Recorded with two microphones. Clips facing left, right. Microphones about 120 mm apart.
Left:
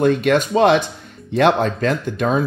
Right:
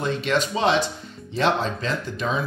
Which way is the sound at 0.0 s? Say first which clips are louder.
Left 8 dB; 55° left (ahead or behind).